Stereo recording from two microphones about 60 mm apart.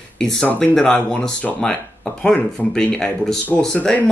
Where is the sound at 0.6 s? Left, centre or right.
Centre.